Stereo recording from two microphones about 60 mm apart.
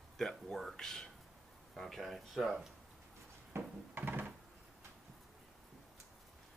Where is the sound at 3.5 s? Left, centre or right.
Right.